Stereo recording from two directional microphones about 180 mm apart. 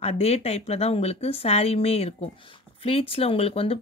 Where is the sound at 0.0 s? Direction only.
35° left (ahead or behind).